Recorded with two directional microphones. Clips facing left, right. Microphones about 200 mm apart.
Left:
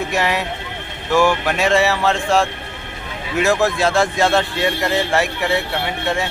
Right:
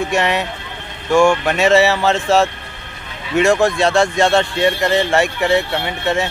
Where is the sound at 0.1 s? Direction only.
Centre (ahead or behind).